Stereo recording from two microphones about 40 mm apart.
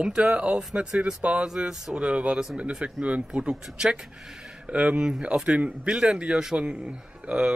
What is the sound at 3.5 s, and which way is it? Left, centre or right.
Speech, centre.